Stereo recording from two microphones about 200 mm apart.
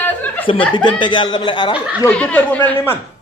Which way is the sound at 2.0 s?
5° left (ahead or behind).